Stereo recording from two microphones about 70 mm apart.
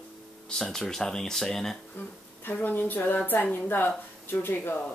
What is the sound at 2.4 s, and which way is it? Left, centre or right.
Speech, left.